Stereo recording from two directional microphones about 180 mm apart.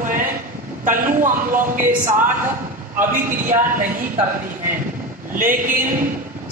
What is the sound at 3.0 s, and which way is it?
Speech, 10° right (ahead or behind).